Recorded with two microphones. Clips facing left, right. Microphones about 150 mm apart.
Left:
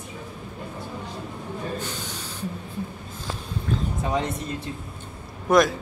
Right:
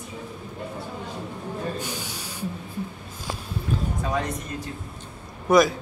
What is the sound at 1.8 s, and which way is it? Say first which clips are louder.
Snort: even; 10° right (ahead or behind).